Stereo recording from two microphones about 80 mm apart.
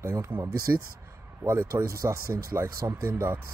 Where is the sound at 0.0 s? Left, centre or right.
Right.